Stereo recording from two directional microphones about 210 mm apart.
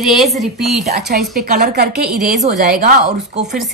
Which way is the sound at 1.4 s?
50° right (ahead or behind).